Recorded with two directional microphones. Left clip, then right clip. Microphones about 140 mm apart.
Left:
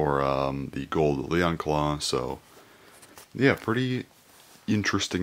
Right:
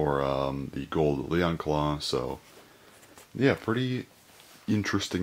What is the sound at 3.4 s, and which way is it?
Speech, 35° left (ahead or behind).